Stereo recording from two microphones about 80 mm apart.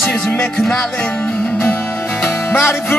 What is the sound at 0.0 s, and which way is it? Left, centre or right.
Music, centre.